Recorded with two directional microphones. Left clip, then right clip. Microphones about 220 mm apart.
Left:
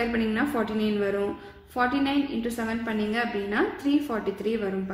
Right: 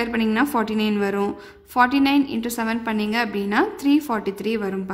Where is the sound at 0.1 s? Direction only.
45° right (ahead or behind).